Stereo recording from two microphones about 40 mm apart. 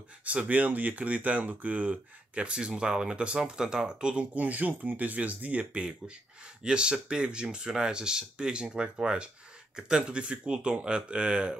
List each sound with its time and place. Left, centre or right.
0.2 s speech: right
4.3 s speech: right